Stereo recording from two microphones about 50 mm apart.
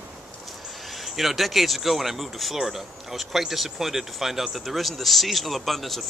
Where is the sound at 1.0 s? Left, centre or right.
Centre.